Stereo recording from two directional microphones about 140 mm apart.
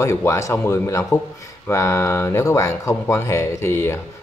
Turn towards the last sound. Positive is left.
turn(degrees=20)  # may be behind; listen again after turning